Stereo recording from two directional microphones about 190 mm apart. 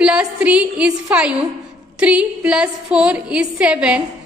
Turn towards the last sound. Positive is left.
turn(degrees=-5)  # may be behind; listen again after turning